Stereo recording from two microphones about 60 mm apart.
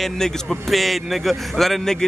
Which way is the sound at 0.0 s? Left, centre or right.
Centre.